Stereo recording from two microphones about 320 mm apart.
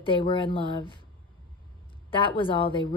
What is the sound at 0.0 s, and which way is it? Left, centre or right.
Speech, centre.